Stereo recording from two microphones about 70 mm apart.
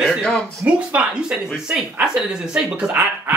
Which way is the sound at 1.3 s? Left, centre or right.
Centre.